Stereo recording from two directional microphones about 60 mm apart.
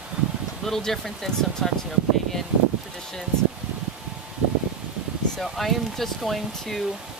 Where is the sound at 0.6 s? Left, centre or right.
Centre.